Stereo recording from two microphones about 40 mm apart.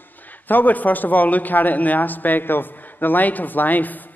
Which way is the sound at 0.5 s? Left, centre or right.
Left.